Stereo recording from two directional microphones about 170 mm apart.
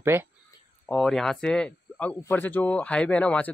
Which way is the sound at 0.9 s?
5° left (ahead or behind).